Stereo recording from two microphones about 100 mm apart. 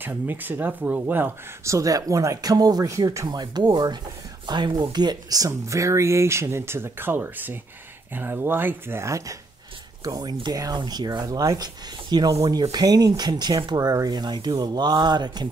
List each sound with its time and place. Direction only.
0.0 s speech: 20° right (ahead or behind); by 15.4 s 45° right (ahead or behind)